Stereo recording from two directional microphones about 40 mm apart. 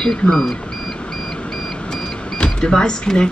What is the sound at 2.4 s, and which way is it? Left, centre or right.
Speech, centre.